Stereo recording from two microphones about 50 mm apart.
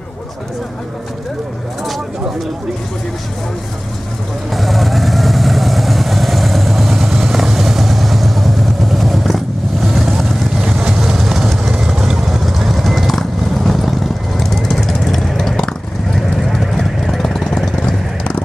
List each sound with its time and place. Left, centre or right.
4.6 s vehicle: centre
16.5 s vehicle: centre